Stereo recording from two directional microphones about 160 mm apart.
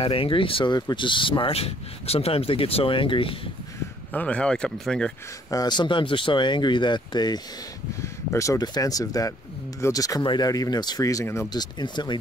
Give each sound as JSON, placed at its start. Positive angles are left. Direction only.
{"t": 0.0, "sound": "speech", "side_deg": 35}
{"t": 4.1, "sound": "speech", "side_deg": 10}
{"t": 5.5, "sound": "speech", "side_deg": 25}